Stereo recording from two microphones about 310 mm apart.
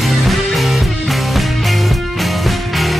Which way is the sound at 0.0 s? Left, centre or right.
Centre.